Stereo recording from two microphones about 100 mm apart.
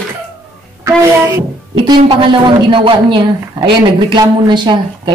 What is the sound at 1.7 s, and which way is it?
A woman's voice, 50° right (ahead or behind).